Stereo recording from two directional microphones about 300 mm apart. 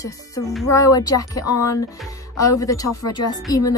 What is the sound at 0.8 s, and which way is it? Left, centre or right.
Speech, centre.